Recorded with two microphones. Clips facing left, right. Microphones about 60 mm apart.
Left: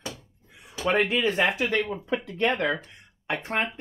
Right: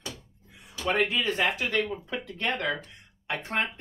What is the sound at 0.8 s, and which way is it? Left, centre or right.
Speech, left.